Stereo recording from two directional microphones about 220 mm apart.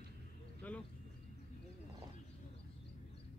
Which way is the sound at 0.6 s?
5° left (ahead or behind).